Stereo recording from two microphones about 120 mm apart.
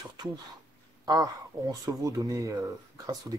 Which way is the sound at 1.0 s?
30° right (ahead or behind).